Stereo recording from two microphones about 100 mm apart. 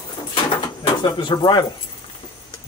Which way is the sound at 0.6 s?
45° left (ahead or behind).